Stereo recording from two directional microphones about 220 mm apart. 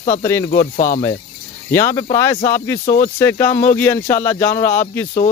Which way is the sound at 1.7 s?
10° left (ahead or behind).